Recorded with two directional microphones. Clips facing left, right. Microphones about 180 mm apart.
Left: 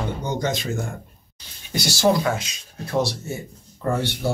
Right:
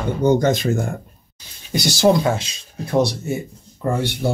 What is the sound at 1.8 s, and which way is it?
Speech, 25° right (ahead or behind).